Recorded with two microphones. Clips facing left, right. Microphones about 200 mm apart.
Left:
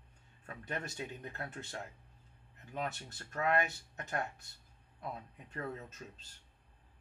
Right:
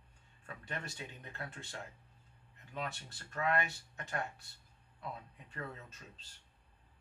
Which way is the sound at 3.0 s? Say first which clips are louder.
Even; 45° left (ahead or behind).